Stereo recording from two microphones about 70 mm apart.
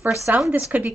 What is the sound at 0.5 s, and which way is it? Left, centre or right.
Speech, right.